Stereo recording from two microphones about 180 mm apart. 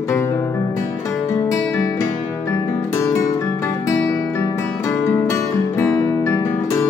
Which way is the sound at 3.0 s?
15° left (ahead or behind).